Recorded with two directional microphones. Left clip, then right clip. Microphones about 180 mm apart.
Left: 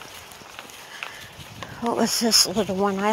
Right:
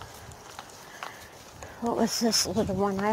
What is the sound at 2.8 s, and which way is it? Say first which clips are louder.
Speech: left 6 dB; 15° left (ahead or behind).